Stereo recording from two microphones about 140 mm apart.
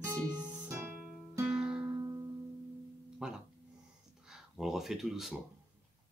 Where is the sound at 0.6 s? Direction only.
15° right (ahead or behind).